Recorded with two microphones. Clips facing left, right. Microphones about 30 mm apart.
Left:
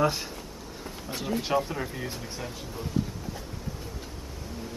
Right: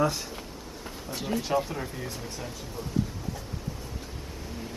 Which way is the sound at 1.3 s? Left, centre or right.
Left.